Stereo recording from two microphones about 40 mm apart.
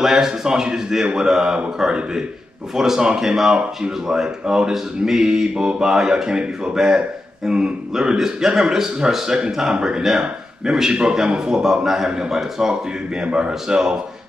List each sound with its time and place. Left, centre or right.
0.0 s a man's voice: centre